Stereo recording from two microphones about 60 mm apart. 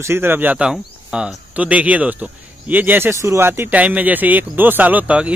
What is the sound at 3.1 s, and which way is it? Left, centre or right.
Speech, right.